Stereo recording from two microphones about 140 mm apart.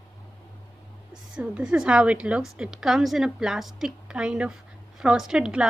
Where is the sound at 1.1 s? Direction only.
5° right (ahead or behind).